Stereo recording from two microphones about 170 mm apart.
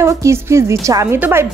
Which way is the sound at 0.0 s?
15° right (ahead or behind).